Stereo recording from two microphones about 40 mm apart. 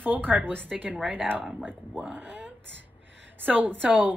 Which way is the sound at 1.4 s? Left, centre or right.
Centre.